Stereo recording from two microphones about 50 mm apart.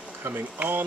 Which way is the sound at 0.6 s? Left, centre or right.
Right.